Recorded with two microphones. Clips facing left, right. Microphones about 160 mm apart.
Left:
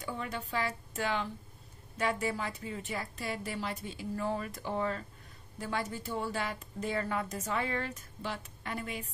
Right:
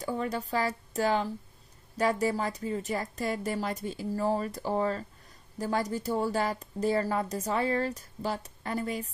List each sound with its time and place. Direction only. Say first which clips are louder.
0.0 s a woman's voice: right 7 dB; 40° right (ahead or behind)